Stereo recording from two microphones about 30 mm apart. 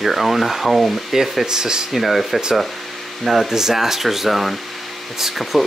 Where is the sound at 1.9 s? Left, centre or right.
Centre.